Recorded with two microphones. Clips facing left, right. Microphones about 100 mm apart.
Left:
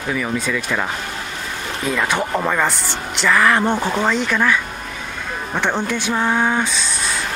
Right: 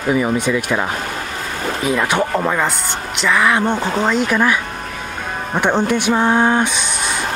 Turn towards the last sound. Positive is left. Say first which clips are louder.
# right 3 dB
turn(degrees=-15)  # may be behind; listen again after turning